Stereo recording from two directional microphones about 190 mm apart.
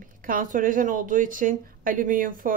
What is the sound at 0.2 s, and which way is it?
A woman's voice, 45° right (ahead or behind).